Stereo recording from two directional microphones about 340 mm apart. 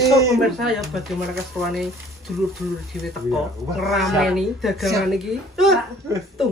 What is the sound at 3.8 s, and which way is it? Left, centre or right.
Speech, centre.